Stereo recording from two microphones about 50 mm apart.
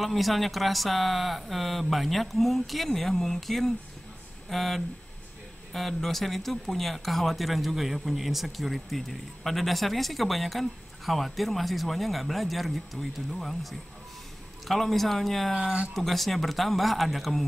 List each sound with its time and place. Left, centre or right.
0.0 s speech: centre
15.5 s speech: right
15.9 s speech: centre